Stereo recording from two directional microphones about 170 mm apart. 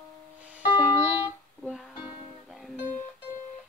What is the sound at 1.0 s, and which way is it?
Music, 5° right (ahead or behind).